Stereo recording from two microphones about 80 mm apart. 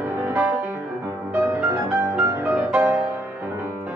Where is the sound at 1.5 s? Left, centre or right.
Right.